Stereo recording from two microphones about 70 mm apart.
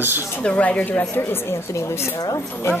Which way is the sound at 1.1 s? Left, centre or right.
Left.